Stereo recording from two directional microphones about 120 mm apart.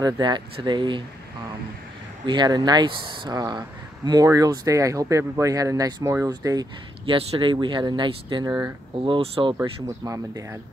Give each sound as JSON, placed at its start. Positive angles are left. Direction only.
{"t": 0.0, "sound": "speech", "side_deg": -40}
{"t": 2.2, "sound": "speech", "side_deg": -40}
{"t": 7.1, "sound": "speech", "side_deg": -45}
{"t": 8.5, "sound": "speech", "side_deg": -15}
{"t": 9.0, "sound": "speech", "side_deg": -50}
{"t": 9.6, "sound": "speech", "side_deg": -25}